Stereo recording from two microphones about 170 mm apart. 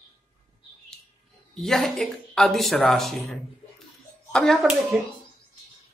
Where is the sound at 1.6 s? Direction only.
Centre (ahead or behind).